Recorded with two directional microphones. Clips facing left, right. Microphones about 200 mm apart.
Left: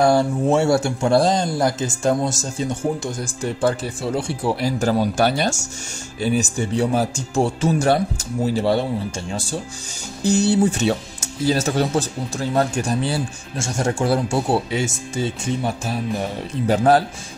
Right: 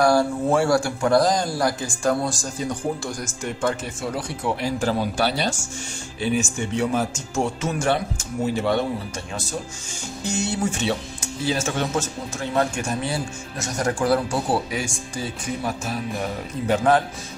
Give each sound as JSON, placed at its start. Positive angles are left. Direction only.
{"t": 0.0, "sound": "speech", "side_deg": 25}
{"t": 6.2, "sound": "speech", "side_deg": 40}